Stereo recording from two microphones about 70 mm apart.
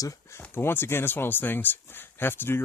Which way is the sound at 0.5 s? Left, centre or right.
Left.